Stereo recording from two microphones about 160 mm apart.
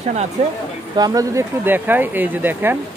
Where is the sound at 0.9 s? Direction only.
25° right (ahead or behind).